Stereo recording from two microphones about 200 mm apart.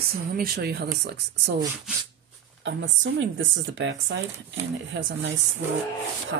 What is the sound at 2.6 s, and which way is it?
Speech, 70° right (ahead or behind).